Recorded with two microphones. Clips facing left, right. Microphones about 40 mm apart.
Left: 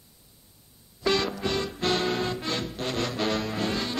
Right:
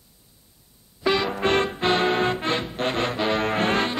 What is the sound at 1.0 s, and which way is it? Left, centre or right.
Music, centre.